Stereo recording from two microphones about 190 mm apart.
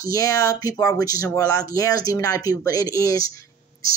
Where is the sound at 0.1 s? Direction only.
15° left (ahead or behind).